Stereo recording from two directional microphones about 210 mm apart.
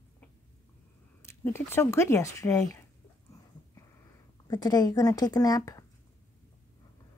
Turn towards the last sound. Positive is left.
turn(degrees=15)  # may be behind; listen again after turning